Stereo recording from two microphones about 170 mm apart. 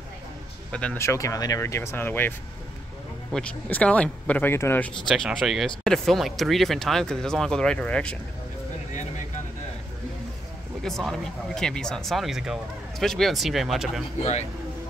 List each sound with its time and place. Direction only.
0.7 s speech: 5° left (ahead or behind)
3.3 s speech: 5° left (ahead or behind)
10.8 s speech: centre (ahead or behind)